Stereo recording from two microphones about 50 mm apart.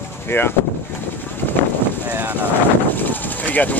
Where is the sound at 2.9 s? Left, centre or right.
Left.